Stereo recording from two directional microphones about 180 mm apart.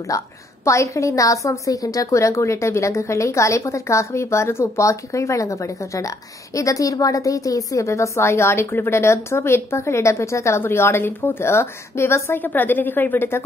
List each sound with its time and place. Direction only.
0.1 s a woman's voice: 20° left (ahead or behind)